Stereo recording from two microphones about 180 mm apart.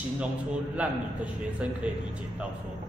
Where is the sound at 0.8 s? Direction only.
5° right (ahead or behind).